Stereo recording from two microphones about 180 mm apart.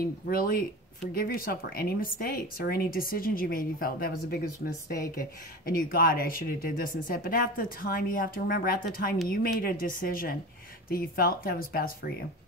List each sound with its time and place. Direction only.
0.0 s a woman's voice: 55° left (ahead or behind)